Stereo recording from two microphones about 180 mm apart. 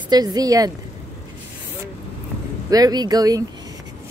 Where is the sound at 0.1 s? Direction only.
20° right (ahead or behind).